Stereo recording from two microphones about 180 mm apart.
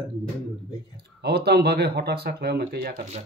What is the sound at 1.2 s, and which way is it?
Speech, 65° right (ahead or behind).